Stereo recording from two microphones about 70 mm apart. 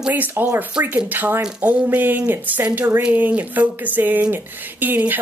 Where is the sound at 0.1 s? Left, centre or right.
Right.